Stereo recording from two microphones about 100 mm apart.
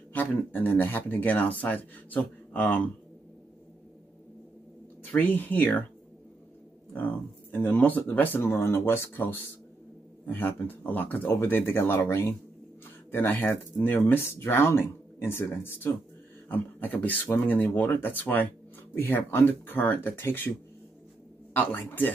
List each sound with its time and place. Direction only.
0.1 s speech: 20° left (ahead or behind)
5.0 s speech: 15° left (ahead or behind)
6.9 s speech: 15° left (ahead or behind)
21.5 s speech: 20° left (ahead or behind)